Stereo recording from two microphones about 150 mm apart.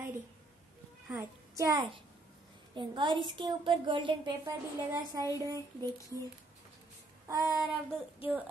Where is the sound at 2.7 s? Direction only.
30° right (ahead or behind).